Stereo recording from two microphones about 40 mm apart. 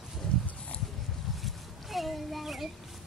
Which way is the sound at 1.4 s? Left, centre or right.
Centre.